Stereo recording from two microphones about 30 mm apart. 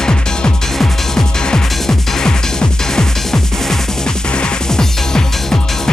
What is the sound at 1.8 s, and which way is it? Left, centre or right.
Music, left.